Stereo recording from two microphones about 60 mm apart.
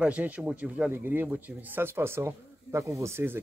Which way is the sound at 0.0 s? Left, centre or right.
Right.